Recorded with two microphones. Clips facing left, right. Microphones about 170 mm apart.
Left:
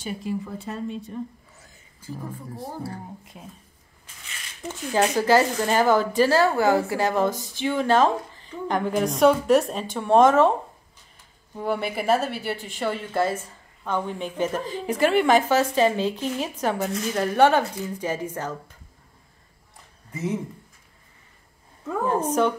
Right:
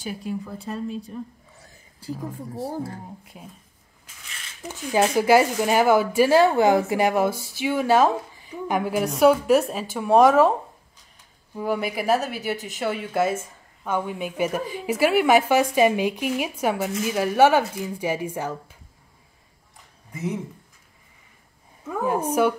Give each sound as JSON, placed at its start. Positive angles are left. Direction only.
{"t": 0.0, "sound": "speech", "side_deg": 0}
{"t": 2.0, "sound": "speech", "side_deg": -35}
{"t": 4.6, "sound": "a woman's voice", "side_deg": -10}
{"t": 11.5, "sound": "a woman's voice", "side_deg": -5}
{"t": 21.8, "sound": "a woman's voice", "side_deg": -10}